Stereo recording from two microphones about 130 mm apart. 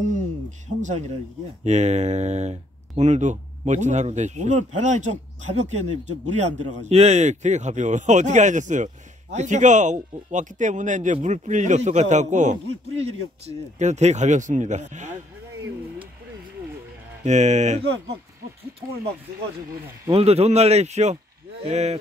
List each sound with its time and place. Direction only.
1.6 s a man's voice: 60° right (ahead or behind)
17.2 s speech: 65° right (ahead or behind)
20.1 s speech: 50° right (ahead or behind)